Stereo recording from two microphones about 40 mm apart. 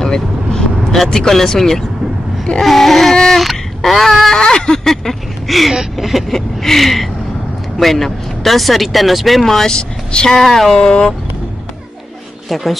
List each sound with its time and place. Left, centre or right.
0.0 s vehicle: centre
1.0 s speech: centre
4.4 s a sound: left
4.8 s a sound: centre
5.7 s speech: centre
9.8 s speech: left
10.3 s speech: centre
12.4 s speech: centre